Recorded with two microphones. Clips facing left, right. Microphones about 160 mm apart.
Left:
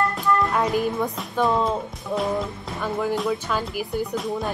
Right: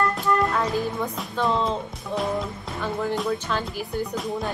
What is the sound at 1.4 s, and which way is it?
Speech, 5° left (ahead or behind).